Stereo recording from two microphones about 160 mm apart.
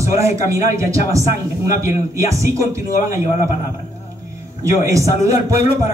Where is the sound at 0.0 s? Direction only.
20° right (ahead or behind).